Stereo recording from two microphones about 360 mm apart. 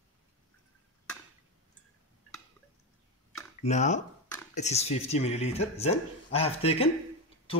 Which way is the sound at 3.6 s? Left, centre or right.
Centre.